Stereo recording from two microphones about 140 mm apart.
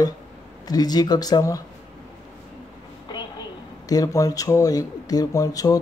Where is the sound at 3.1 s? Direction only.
30° left (ahead or behind).